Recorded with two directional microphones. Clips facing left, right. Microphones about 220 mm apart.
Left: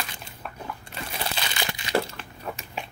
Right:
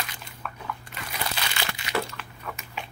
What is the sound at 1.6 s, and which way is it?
Crumpling, 20° left (ahead or behind).